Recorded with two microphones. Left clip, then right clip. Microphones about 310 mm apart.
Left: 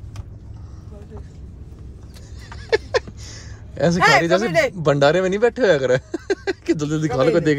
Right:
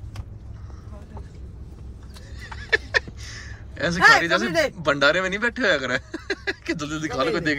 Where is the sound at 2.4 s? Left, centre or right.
Centre.